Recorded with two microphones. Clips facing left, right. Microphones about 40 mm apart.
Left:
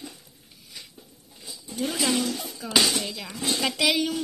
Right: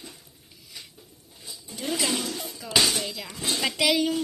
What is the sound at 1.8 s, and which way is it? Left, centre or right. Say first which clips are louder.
Speech: left 2 dB; centre.